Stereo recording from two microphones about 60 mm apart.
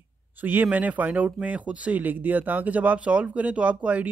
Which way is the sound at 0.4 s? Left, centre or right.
Right.